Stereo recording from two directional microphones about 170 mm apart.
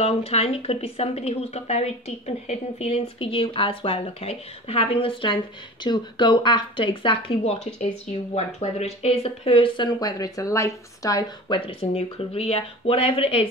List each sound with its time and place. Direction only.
0.0 s speech: 35° left (ahead or behind)